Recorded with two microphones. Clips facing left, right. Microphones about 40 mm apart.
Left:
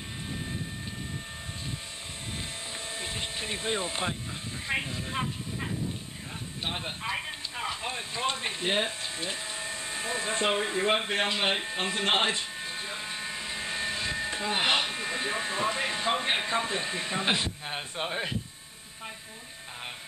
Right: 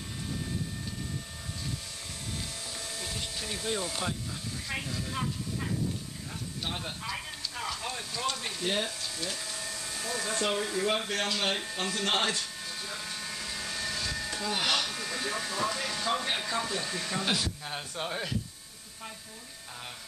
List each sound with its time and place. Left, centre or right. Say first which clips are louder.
0.3 s vehicle: right 1 dB; left
3.0 s a sound: left 3 dB; left
6.6 s speech: left 3 dB; left